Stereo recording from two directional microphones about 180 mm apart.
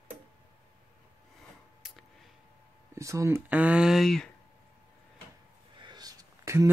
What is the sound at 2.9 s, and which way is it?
Speech, 15° right (ahead or behind).